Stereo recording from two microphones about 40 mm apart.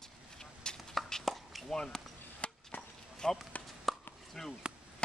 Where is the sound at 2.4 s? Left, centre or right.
Left.